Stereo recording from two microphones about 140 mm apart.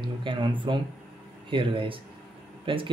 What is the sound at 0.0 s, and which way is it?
Speech, 35° right (ahead or behind).